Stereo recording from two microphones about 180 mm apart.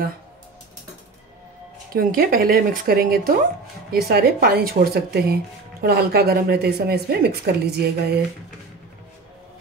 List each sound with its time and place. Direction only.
2.0 s speech: 50° right (ahead or behind)